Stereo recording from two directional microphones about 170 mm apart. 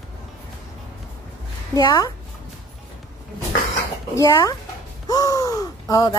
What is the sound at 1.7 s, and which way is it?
Speech, 20° left (ahead or behind).